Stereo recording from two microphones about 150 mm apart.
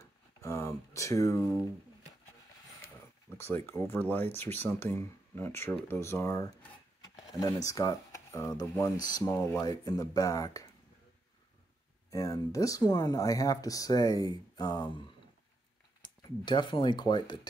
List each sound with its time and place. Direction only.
0.0 s a sound: 15° left (ahead or behind)
3.3 s speech: 15° left (ahead or behind)
12.1 s speech: 20° left (ahead or behind)
16.0 s speech: 30° left (ahead or behind)